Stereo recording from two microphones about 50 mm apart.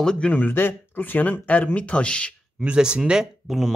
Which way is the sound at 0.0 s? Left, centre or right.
Centre.